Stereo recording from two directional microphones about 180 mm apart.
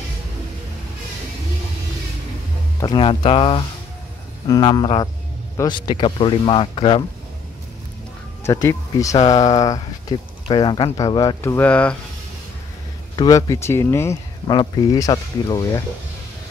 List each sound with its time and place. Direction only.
2.8 s speech: 25° left (ahead or behind)
8.5 s speech: 15° left (ahead or behind)
13.1 s speech: 20° left (ahead or behind)